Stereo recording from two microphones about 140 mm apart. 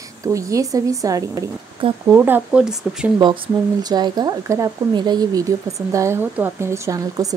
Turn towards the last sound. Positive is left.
turn(degrees=-25)  # may be behind; listen again after turning